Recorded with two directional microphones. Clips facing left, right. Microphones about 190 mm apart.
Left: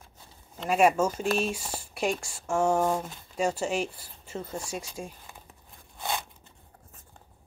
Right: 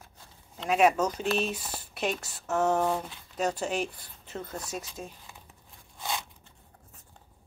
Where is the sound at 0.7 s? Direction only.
10° left (ahead or behind).